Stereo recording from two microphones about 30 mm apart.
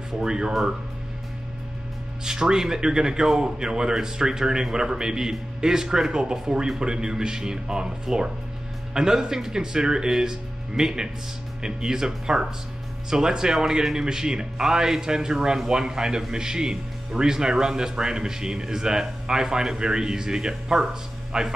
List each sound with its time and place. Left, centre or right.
0.2 s a man's voice: right
2.2 s a man's voice: centre